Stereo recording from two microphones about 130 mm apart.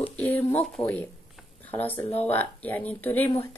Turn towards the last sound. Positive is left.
turn(degrees=15)  # may be behind; listen again after turning